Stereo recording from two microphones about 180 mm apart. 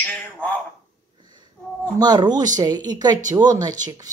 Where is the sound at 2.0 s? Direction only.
20° right (ahead or behind).